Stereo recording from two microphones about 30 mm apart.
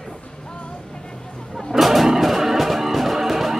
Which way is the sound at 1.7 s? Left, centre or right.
Centre.